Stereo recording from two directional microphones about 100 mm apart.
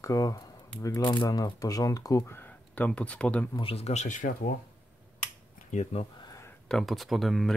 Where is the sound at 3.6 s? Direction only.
80° left.